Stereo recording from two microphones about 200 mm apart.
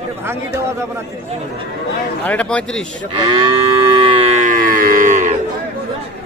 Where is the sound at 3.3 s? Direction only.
20° right (ahead or behind).